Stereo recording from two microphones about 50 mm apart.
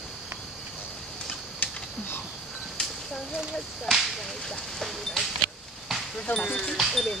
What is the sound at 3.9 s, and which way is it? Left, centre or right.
Speech, centre.